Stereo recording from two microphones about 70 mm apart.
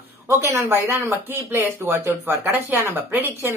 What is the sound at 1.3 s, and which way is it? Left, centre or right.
Speech, right.